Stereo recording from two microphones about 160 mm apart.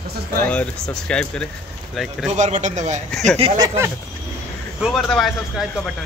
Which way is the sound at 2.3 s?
50° right (ahead or behind).